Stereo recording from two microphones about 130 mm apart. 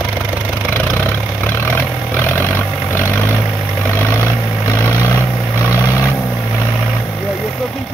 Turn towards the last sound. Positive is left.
turn(degrees=20)  # may be behind; listen again after turning